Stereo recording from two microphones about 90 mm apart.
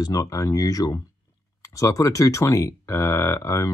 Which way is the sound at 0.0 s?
45° left (ahead or behind).